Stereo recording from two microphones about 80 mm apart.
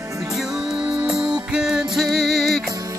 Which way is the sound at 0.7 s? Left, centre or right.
Right.